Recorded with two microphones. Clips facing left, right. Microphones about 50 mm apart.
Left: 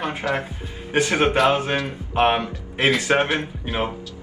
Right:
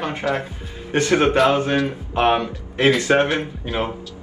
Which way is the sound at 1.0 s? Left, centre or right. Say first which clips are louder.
Right 3 dB; left.